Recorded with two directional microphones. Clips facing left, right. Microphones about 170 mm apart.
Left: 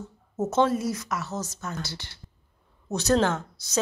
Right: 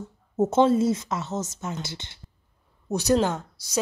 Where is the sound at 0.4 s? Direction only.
25° right (ahead or behind).